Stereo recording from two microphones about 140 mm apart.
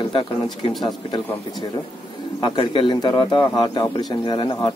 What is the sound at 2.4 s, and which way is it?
Speech, 40° left (ahead or behind).